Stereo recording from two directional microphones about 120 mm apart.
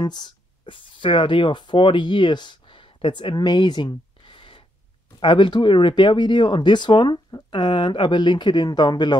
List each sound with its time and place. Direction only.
0.0 s speech: 35° left (ahead or behind)